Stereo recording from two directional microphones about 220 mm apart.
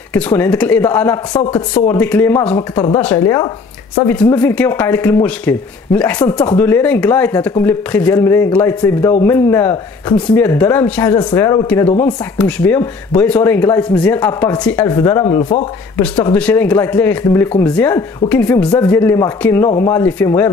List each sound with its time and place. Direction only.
0.1 s speech: 10° left (ahead or behind)